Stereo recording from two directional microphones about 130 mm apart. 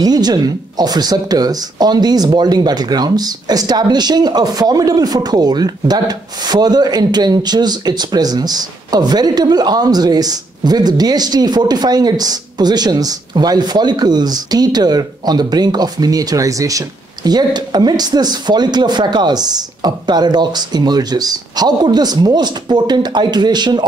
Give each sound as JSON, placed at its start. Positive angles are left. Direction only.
{"t": 0.0, "sound": "speech", "side_deg": -30}